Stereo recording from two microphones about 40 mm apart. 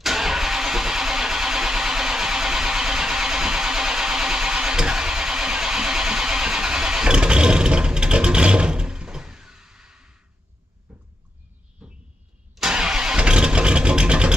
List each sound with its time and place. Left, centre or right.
0.0 s vehicle: centre
10.9 s a sound: right
12.6 s vehicle: centre